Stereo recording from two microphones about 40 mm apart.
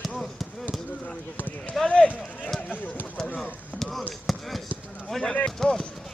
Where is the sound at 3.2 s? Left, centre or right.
Left.